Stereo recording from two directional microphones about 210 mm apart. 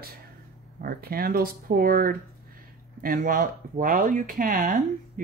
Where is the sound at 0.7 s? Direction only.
45° right (ahead or behind).